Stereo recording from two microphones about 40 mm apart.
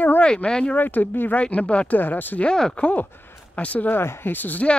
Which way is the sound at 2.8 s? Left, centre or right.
Left.